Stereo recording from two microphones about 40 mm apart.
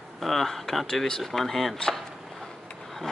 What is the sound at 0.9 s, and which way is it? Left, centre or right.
Speech, centre.